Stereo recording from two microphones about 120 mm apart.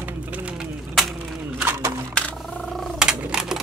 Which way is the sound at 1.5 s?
20° right (ahead or behind).